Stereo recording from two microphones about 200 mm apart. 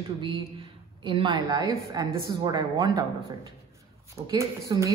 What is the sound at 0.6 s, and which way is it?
A woman's voice, 25° right (ahead or behind).